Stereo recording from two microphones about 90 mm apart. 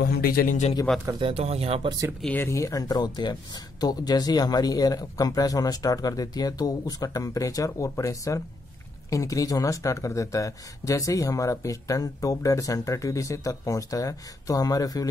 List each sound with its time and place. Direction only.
0.9 s speech: 10° left (ahead or behind)
1.2 s speech: 90° right
2.2 s speech: 20° left (ahead or behind)
2.5 s speech: 40° left (ahead or behind)